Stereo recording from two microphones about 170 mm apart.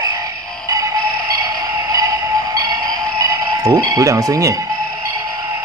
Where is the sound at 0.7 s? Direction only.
20° right (ahead or behind).